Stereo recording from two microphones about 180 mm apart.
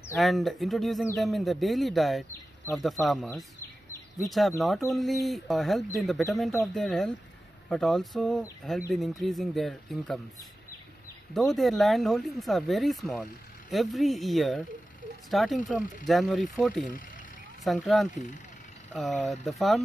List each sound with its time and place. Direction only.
0.2 s speech: centre (ahead or behind)
11.3 s speech: centre (ahead or behind)
18.1 s speech: 45° left (ahead or behind)
18.9 s speech: centre (ahead or behind)